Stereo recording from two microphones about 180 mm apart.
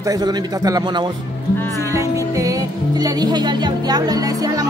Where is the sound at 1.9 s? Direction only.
15° right (ahead or behind).